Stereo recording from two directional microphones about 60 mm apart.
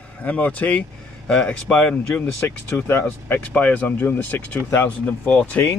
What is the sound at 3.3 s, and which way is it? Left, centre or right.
Speech, left.